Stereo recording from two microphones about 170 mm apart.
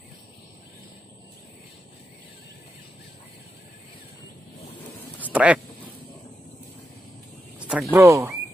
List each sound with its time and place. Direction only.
5.2 s speech: 10° right (ahead or behind)
7.5 s a sound: 5° right (ahead or behind)
7.9 s speech: 15° right (ahead or behind)